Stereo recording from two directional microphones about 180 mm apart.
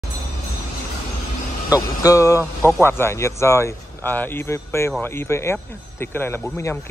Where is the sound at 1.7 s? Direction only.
20° left (ahead or behind).